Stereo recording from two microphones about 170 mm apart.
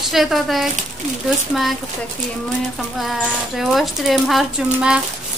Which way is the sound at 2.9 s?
Centre (ahead or behind).